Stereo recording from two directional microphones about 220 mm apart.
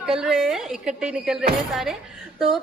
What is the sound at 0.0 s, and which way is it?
Speech, centre (ahead or behind).